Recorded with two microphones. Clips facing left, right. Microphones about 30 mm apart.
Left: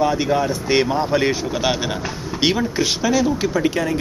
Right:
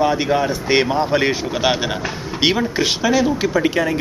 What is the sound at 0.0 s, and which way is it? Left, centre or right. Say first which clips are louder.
Speech: right 1 dB; centre.